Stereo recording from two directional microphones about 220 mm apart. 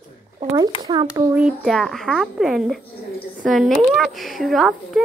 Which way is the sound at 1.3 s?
5° right (ahead or behind).